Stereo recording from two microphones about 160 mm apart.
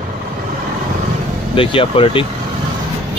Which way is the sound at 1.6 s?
35° left (ahead or behind).